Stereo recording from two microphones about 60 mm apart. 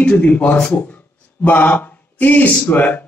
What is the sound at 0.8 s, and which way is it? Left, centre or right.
Speech, left.